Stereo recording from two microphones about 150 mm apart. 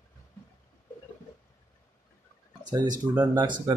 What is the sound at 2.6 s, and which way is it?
Speech, 25° right (ahead or behind).